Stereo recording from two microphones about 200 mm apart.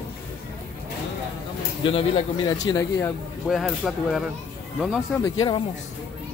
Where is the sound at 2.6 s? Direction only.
15° left (ahead or behind).